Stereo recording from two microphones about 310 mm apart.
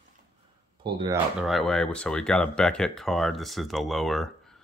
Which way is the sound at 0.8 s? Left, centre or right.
Centre.